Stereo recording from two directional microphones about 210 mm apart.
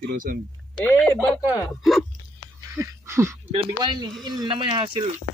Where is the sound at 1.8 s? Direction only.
Centre (ahead or behind).